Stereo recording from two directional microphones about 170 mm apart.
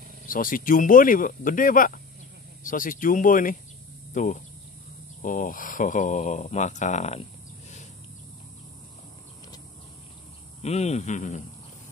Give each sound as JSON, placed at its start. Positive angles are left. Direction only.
{"t": 0.3, "sound": "speech", "side_deg": 55}
{"t": 10.6, "sound": "a man's voice", "side_deg": 40}